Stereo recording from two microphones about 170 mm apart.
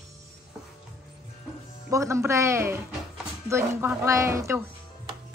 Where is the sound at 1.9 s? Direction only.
20° right (ahead or behind).